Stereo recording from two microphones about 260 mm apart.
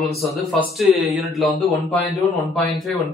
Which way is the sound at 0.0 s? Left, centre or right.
Centre.